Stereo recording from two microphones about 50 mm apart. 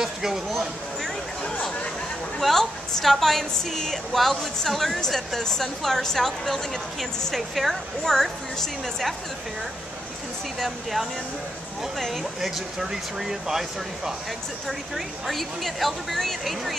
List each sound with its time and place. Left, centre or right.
0.0 s a sound: centre
0.5 s speech: centre
2.3 s a woman's voice: centre
10.6 s a woman's voice: centre